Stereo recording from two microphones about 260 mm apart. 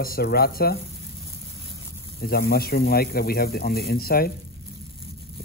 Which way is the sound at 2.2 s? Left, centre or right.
Left.